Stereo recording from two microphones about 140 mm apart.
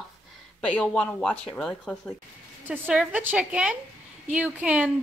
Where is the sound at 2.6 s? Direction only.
10° right (ahead or behind).